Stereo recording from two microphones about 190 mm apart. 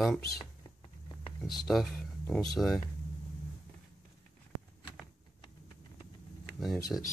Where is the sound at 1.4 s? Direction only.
Centre (ahead or behind).